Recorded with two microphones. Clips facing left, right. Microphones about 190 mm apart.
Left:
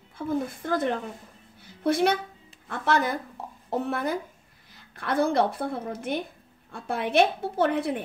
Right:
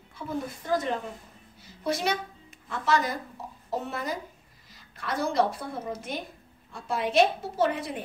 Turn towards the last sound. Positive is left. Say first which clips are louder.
# left 3 dB
turn(degrees=60)  # may be behind; listen again after turning